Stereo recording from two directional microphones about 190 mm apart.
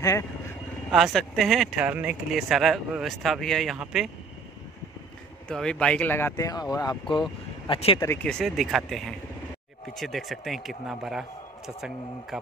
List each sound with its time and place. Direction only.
0.9 s speech: centre (ahead or behind)
5.5 s speech: 5° left (ahead or behind); by 8.0 s 25° left (ahead or behind)
8.0 s speech: 10° left (ahead or behind)